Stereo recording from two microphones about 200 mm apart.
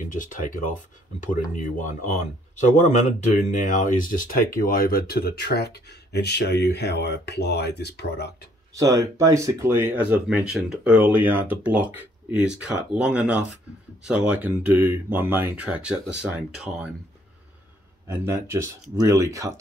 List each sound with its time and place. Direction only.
0.0 s speech: 40° left (ahead or behind)
8.7 s speech: 15° right (ahead or behind)
18.0 s speech: 10° right (ahead or behind)